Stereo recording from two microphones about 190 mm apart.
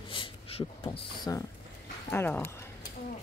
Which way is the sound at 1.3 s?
20° left (ahead or behind).